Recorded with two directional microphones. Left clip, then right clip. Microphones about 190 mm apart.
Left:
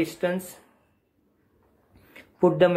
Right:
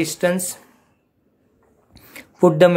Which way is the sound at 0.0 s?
30° right (ahead or behind).